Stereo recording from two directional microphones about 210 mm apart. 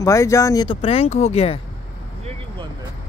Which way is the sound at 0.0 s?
15° left (ahead or behind).